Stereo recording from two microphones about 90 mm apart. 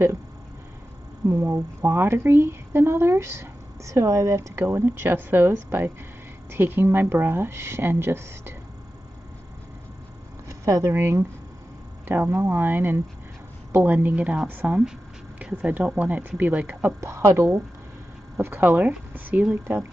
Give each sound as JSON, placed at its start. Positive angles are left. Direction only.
{"t": 1.3, "sound": "a woman's voice", "side_deg": -30}
{"t": 10.6, "sound": "a woman's voice", "side_deg": -35}
{"t": 17.0, "sound": "a woman's voice", "side_deg": -30}